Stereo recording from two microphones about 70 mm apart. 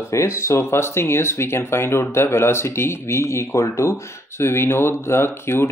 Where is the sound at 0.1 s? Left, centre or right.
Left.